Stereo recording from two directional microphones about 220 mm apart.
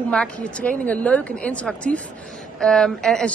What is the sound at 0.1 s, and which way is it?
A man's voice, 5° left (ahead or behind).